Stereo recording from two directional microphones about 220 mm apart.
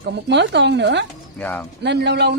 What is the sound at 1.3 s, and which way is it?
Speech, 10° left (ahead or behind).